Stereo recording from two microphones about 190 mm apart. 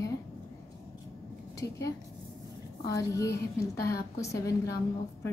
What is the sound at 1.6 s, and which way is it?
Speech, 15° left (ahead or behind).